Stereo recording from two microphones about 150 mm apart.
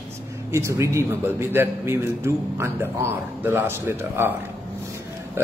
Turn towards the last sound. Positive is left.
turn(degrees=-15)  # may be behind; listen again after turning